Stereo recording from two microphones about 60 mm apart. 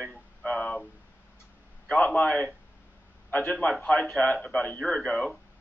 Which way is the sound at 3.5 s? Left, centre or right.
Centre.